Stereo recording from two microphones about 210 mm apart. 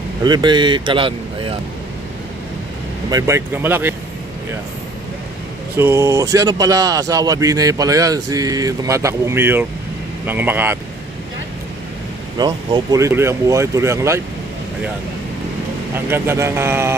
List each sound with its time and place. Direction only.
0.2 s speech: 20° right (ahead or behind)
3.1 s speech: 15° right (ahead or behind)
5.8 s speech: 10° right (ahead or behind)
12.4 s speech: 20° right (ahead or behind)
15.9 s speech: 10° right (ahead or behind)